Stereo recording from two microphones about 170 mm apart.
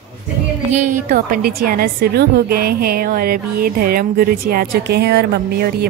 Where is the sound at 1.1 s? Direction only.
55° right (ahead or behind).